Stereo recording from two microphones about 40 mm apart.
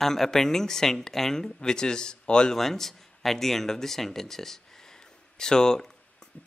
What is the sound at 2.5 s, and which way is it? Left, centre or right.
A man's voice, centre.